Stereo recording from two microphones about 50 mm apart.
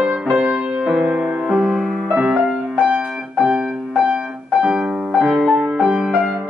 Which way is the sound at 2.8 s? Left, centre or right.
Right.